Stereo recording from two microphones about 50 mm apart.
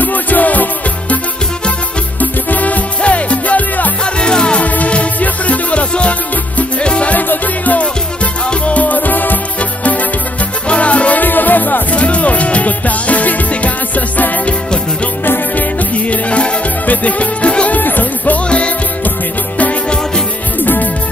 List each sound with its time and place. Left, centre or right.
0.0 s music: left
2.1 s music: left
4.0 s music: centre
7.2 s music: left
11.2 s music: left
15.2 s music: left
15.9 s music: left
17.7 s music: left
19.6 s music: left
20.6 s music: left